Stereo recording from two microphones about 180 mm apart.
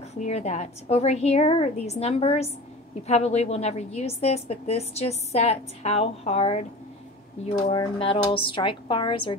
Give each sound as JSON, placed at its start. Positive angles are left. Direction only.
{"t": 0.2, "sound": "a woman's voice", "side_deg": 40}
{"t": 7.6, "sound": "speech", "side_deg": 25}